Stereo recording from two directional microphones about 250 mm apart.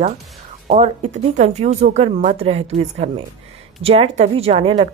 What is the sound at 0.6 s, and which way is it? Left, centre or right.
Speech, right.